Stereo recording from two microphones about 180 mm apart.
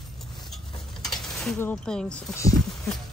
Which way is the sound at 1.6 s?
5° left (ahead or behind).